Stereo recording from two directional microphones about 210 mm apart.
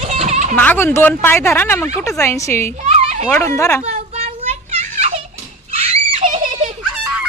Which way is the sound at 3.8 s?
30° right (ahead or behind).